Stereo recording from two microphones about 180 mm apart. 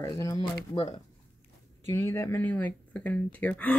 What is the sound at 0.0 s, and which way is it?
Speech, 20° left (ahead or behind).